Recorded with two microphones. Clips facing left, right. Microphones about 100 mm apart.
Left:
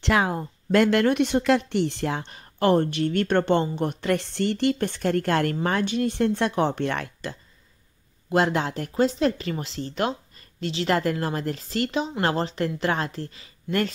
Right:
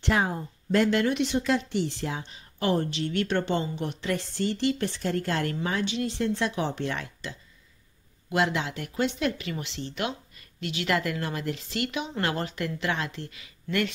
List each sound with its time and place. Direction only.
0.0 s speech: 85° left; by 7.3 s 55° left (ahead or behind)
8.3 s speech: 40° left (ahead or behind)